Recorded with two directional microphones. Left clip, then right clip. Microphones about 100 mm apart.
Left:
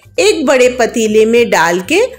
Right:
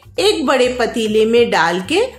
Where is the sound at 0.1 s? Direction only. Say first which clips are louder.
Left 4 dB; 45° left (ahead or behind).